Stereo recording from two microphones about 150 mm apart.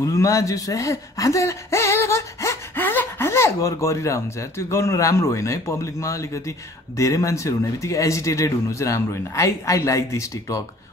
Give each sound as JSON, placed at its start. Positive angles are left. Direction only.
{"t": 0.0, "sound": "speech", "side_deg": 20}